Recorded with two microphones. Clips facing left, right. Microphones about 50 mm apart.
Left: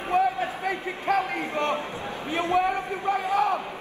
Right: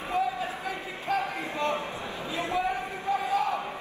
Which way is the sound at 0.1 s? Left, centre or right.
Left.